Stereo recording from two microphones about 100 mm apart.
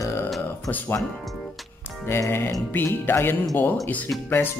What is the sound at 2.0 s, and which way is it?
Speech, 25° left (ahead or behind).